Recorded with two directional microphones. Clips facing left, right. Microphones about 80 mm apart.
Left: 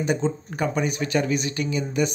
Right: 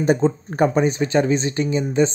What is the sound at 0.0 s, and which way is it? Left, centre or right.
Speech, right.